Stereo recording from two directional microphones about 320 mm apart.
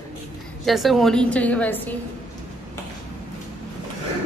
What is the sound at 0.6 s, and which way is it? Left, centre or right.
A woman's voice, centre.